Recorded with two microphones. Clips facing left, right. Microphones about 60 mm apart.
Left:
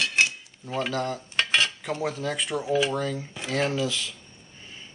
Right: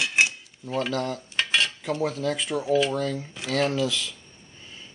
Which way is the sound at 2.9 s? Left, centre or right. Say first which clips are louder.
Right 1 dB; centre.